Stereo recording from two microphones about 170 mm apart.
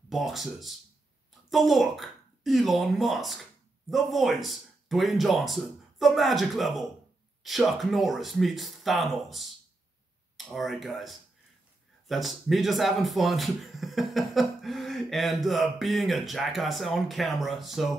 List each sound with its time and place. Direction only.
0.1 s speech: centre (ahead or behind)